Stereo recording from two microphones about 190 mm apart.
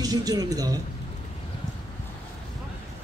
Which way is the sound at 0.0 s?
20° right (ahead or behind).